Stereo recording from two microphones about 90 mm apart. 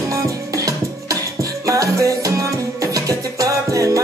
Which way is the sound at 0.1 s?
35° right (ahead or behind).